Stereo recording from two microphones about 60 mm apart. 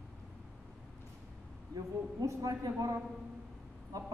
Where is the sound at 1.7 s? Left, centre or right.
Right.